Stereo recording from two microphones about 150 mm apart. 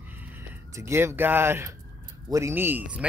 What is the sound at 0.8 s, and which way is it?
Speech, 15° right (ahead or behind).